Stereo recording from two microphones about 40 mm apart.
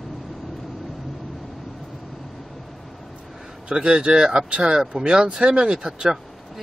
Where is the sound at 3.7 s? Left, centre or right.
Right.